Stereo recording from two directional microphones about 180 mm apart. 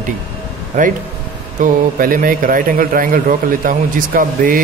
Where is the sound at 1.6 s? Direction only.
50° right (ahead or behind).